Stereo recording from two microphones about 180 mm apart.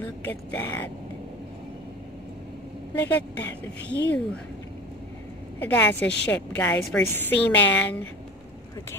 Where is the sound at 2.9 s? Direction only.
10° left (ahead or behind).